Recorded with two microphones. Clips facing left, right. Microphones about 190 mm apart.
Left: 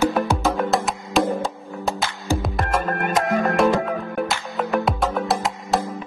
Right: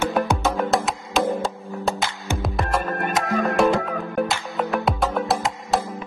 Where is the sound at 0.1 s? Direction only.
Centre (ahead or behind).